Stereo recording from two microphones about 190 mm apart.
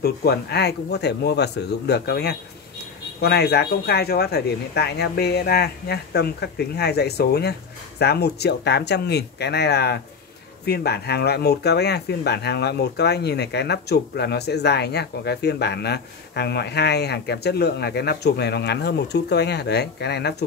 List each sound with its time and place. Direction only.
0.0 s speech: 55° left (ahead or behind)